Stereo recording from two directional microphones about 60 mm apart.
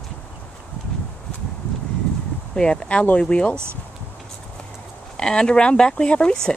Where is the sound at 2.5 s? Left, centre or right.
Centre.